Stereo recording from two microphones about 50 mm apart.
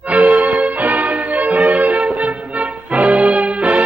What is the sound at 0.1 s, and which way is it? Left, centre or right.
Music, right.